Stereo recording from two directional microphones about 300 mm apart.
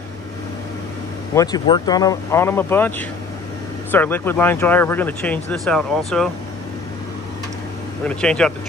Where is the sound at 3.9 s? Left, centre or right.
Centre.